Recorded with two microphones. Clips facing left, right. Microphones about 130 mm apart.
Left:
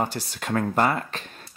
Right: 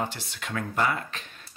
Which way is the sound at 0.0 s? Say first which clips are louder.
Left 5 dB; 40° left (ahead or behind).